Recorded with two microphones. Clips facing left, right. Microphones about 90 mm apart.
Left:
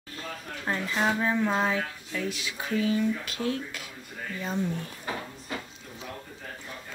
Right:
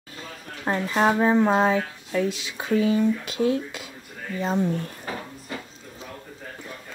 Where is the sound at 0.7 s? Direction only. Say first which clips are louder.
Right 6 dB; 40° right (ahead or behind); by 3.8 s 20° right (ahead or behind).